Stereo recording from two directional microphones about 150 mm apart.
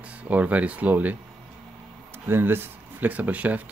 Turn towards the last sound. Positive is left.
turn(degrees=-10)  # may be behind; listen again after turning